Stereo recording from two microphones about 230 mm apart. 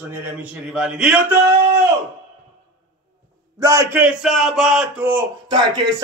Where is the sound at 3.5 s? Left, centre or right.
Centre.